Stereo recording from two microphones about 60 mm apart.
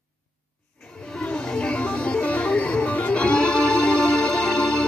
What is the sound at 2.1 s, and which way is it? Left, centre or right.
Music, left.